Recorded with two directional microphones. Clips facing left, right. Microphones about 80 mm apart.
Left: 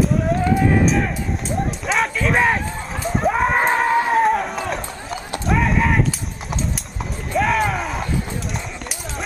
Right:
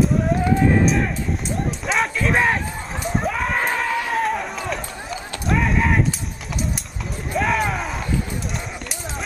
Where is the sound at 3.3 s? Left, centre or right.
Left.